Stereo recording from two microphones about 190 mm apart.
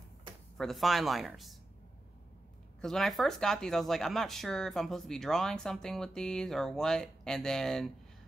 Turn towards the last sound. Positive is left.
turn(degrees=0)  # may be behind; listen again after turning